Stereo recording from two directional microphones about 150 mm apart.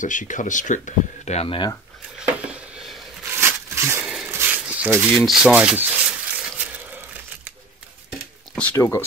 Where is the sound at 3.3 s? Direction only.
15° right (ahead or behind).